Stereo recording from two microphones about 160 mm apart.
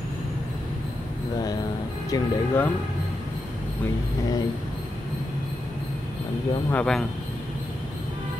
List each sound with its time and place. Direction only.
2.0 s speech: 20° left (ahead or behind)
6.7 s speech: 5° left (ahead or behind)